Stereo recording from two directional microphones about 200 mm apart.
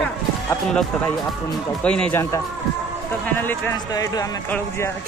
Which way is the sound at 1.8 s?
5° left (ahead or behind).